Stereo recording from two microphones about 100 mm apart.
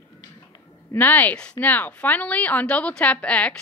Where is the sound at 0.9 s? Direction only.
15° left (ahead or behind).